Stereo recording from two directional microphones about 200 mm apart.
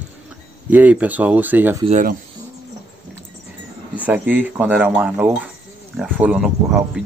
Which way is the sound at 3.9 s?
10° right (ahead or behind).